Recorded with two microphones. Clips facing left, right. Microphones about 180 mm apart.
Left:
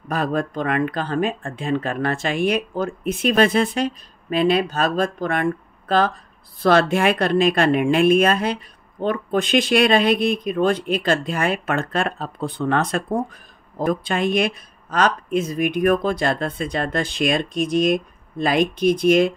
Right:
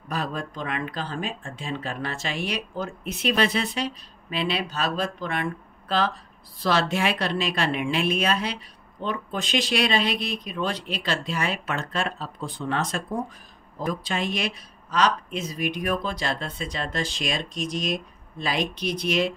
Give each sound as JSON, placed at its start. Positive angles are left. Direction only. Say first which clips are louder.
{"t": 0.1, "sound": "speech", "louder": "left 8 dB", "side_deg": 55}